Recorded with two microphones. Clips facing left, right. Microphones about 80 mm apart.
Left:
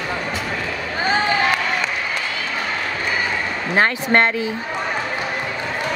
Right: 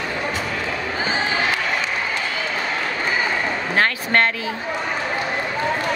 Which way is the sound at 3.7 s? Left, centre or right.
Left.